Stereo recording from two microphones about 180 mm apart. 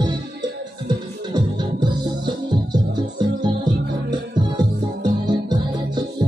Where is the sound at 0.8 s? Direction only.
25° right (ahead or behind).